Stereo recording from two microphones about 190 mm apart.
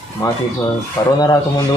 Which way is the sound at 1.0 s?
20° left (ahead or behind).